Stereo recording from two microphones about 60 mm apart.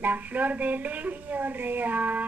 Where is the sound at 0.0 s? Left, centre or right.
Right.